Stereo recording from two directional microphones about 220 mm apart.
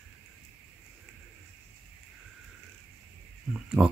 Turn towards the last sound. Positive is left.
turn(degrees=-5)  # may be behind; listen again after turning